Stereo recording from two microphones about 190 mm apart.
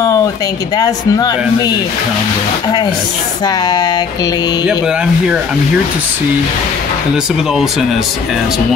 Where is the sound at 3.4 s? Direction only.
20° left (ahead or behind).